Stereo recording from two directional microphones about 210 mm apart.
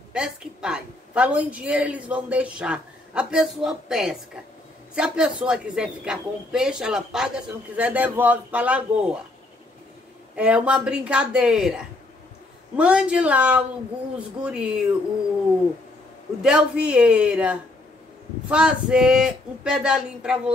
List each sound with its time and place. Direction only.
0.1 s a woman's voice: 5° right (ahead or behind)
10.3 s a woman's voice: 5° right (ahead or behind)
16.4 s a woman's voice: 5° right (ahead or behind)